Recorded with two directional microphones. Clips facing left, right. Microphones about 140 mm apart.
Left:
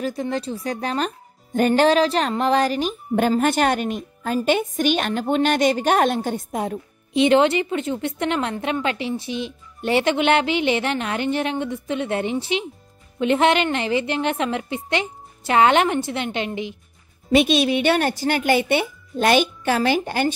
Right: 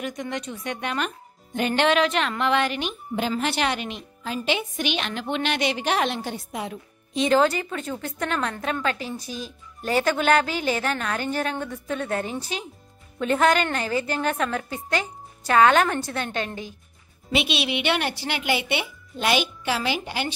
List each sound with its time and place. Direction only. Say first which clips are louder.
0.0 s speech: left 6 dB; 30° left (ahead or behind)
7.2 s a woman's voice: left 3 dB; 25° left (ahead or behind)
17.3 s speech: left 8 dB; 45° left (ahead or behind)